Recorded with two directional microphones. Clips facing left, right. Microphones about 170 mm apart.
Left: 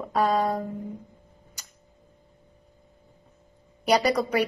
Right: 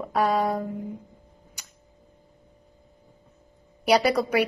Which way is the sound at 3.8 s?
10° right (ahead or behind).